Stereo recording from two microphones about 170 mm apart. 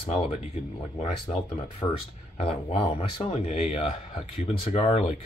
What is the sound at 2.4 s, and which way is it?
Speech, 35° left (ahead or behind).